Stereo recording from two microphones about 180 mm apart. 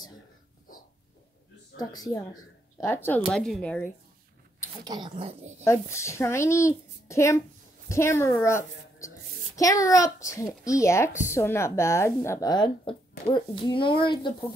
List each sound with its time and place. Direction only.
1.8 s speech: 20° left (ahead or behind)
3.3 s speech: centre (ahead or behind)
4.8 s speech: 25° right (ahead or behind)
5.6 s a child's voice: 15° left (ahead or behind)